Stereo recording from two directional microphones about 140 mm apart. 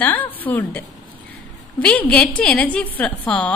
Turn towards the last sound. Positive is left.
turn(degrees=10)  # may be behind; listen again after turning